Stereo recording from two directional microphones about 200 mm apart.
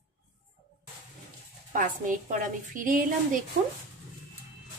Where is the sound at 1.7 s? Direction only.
40° right (ahead or behind).